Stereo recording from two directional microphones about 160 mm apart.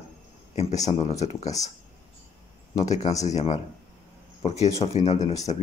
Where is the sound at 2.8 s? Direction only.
45° left (ahead or behind).